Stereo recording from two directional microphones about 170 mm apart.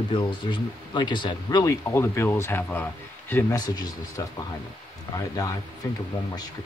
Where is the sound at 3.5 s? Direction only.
25° left (ahead or behind).